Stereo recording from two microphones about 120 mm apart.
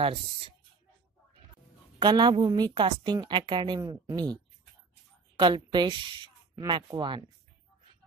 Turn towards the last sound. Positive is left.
turn(degrees=-40)  # may be behind; listen again after turning